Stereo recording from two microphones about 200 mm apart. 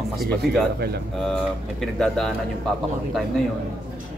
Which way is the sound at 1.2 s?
Centre (ahead or behind).